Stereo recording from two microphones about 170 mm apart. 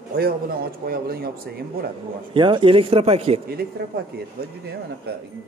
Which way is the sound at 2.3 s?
30° right (ahead or behind).